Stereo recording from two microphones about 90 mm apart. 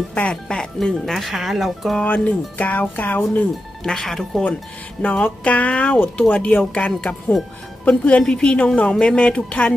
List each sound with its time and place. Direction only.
0.1 s speech: 10° left (ahead or behind)
2.0 s speech: 20° left (ahead or behind)
3.8 s speech: 5° left (ahead or behind)